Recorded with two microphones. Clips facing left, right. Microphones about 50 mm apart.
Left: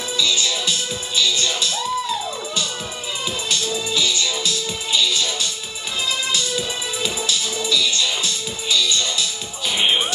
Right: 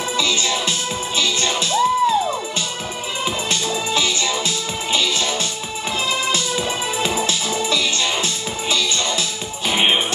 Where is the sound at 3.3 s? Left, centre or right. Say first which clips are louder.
Right 2 dB; right.